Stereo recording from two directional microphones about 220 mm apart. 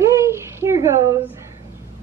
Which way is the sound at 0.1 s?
10° right (ahead or behind).